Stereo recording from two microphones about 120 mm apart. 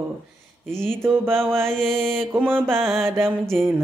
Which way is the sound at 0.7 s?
20° right (ahead or behind).